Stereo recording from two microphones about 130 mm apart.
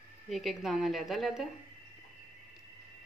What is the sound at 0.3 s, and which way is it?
Speech, centre (ahead or behind).